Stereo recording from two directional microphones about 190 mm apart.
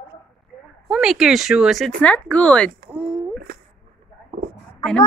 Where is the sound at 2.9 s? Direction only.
5° right (ahead or behind).